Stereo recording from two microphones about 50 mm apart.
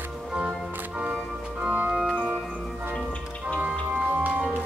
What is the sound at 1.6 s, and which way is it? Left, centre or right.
Organ, right.